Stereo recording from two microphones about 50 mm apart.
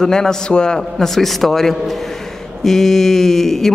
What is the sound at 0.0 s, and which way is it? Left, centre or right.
Speech, centre.